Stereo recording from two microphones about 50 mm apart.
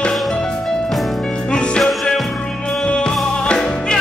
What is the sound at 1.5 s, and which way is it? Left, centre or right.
Music, left.